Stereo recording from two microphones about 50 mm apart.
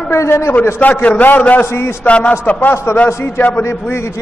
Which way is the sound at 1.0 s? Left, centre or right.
Left.